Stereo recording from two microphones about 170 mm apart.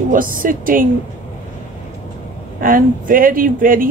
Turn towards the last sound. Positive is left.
turn(degrees=-55)  # may be behind; listen again after turning